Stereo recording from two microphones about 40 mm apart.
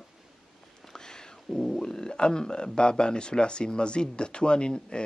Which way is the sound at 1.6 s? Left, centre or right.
Centre.